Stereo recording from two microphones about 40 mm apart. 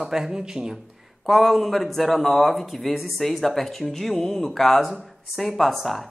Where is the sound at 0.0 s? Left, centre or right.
Centre.